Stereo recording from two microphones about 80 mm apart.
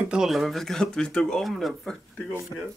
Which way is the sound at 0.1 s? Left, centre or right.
Centre.